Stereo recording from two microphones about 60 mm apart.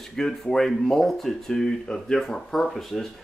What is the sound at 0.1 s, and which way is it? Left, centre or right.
Speech, centre.